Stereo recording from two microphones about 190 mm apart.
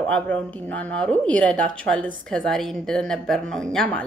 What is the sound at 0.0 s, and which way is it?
A woman's voice, 5° left (ahead or behind).